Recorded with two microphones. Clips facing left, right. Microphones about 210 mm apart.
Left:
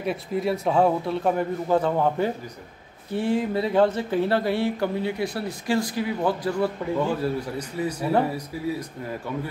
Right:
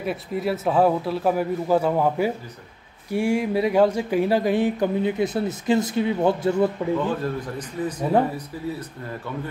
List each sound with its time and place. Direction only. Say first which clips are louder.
0.0 s a man's voice: even; centre (ahead or behind); by 6.7 s 25° right (ahead or behind)
7.0 s a man's voice: left 1 dB; 10° left (ahead or behind)